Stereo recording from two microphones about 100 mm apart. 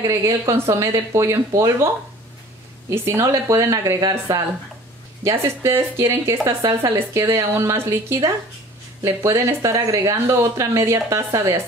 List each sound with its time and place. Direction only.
0.0 s speech: 30° right (ahead or behind)
2.9 s speech: 25° right (ahead or behind)